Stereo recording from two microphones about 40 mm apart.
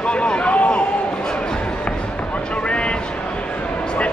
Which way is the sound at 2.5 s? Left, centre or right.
Left.